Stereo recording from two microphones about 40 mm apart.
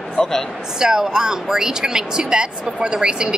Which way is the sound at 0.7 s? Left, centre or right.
Centre.